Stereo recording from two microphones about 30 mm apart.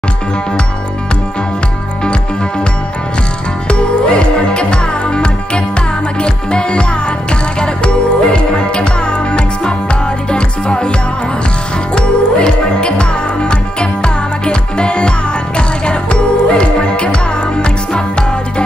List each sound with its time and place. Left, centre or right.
3.6 s music: left
11.9 s music: left